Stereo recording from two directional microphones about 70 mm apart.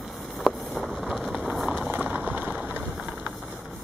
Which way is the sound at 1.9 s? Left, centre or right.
Right.